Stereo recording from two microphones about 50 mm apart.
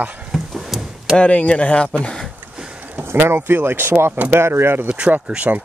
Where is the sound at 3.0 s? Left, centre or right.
Right.